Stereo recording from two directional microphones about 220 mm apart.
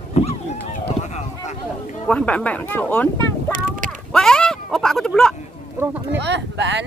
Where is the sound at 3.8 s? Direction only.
35° right (ahead or behind).